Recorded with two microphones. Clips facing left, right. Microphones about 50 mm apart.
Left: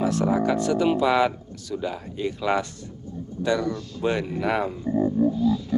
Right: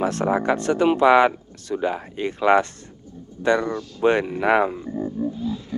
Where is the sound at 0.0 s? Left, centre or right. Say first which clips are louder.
Right 1 dB; right.